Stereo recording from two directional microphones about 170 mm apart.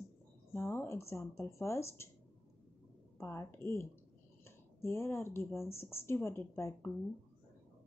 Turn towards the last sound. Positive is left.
turn(degrees=15)  # may be behind; listen again after turning